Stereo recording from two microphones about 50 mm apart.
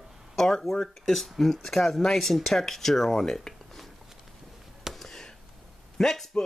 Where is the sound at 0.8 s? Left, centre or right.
Centre.